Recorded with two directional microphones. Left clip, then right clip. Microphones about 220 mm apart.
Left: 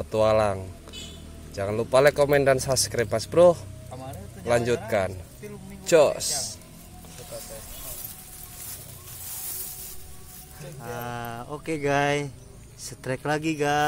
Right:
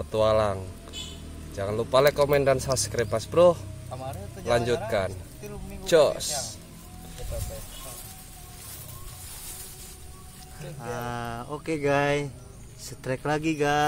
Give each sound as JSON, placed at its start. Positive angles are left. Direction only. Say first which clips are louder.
{"t": 0.0, "sound": "speech", "louder": "left 1 dB", "side_deg": 20}
{"t": 5.9, "sound": "speech", "louder": "left 1 dB", "side_deg": 20}
{"t": 10.8, "sound": "speech", "louder": "right 1 dB", "side_deg": 0}